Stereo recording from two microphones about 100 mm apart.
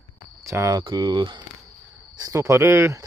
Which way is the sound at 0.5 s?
35° right (ahead or behind).